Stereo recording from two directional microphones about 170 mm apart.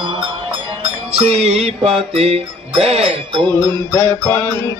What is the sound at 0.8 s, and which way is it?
Music, 35° right (ahead or behind).